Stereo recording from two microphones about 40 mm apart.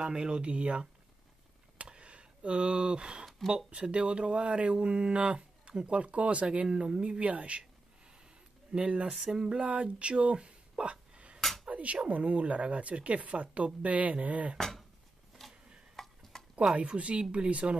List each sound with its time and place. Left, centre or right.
0.0 s speech: right
1.8 s a sound: right
3.7 s speech: right
8.7 s speech: right
9.1 s speech: centre
11.6 s cutlery: right
12.1 s speech: right
14.6 s a sound: centre
16.7 s speech: right